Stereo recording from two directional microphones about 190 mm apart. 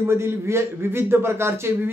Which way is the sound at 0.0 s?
15° right (ahead or behind).